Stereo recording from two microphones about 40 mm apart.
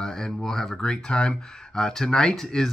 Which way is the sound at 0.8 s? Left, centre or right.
Left.